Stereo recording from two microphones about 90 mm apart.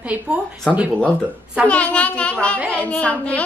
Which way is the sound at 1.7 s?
15° left (ahead or behind).